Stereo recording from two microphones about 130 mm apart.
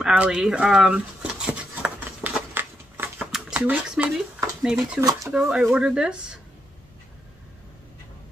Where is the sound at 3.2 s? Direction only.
Centre (ahead or behind).